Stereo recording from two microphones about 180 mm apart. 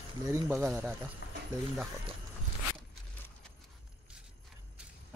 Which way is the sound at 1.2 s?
70° left (ahead or behind).